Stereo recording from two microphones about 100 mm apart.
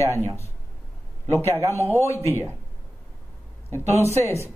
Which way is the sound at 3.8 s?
90° right.